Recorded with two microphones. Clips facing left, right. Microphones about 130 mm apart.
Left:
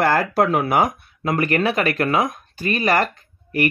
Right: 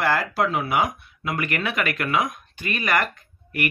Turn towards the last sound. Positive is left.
turn(degrees=35)  # may be behind; listen again after turning